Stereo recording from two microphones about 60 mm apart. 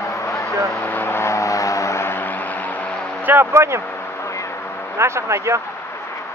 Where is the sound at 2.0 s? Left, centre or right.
Left.